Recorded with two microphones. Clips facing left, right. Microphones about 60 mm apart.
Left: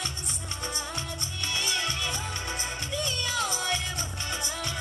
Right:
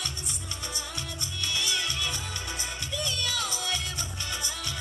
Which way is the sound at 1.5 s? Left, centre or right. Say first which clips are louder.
Left 1 dB; left.